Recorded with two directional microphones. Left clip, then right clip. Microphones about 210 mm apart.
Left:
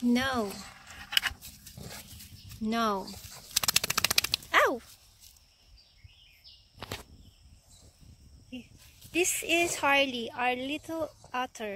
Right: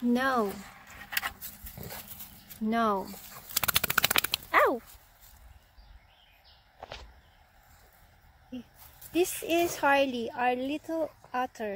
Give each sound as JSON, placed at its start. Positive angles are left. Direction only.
{"t": 0.1, "sound": "speech", "side_deg": -20}
{"t": 2.6, "sound": "a sound", "side_deg": -5}
{"t": 9.1, "sound": "a woman's voice", "side_deg": -15}